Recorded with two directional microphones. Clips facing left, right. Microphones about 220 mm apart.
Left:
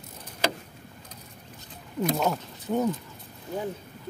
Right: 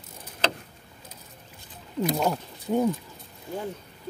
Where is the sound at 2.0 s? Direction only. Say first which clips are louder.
Even; centre (ahead or behind).